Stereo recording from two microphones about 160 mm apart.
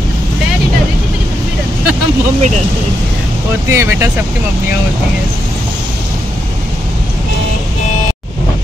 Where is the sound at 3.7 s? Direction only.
20° right (ahead or behind).